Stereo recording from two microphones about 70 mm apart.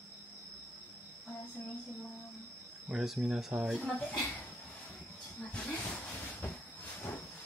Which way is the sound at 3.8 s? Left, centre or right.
Centre.